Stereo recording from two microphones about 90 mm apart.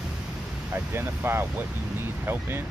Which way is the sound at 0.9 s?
25° right (ahead or behind).